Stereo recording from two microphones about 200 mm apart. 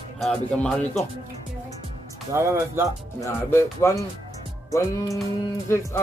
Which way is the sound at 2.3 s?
10° right (ahead or behind).